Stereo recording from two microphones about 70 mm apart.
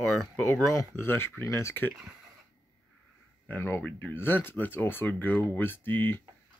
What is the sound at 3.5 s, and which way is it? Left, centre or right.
Speech, left.